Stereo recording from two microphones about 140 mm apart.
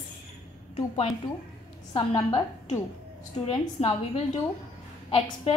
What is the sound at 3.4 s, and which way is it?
Speech, 40° left (ahead or behind).